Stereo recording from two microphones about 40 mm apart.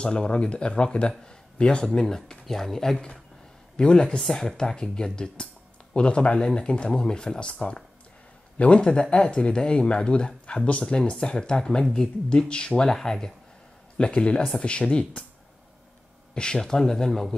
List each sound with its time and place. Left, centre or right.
0.0 s speech: left; by 3.0 s centre
3.7 s speech: left
4.2 s speech: centre
13.9 s speech: left
16.3 s speech: centre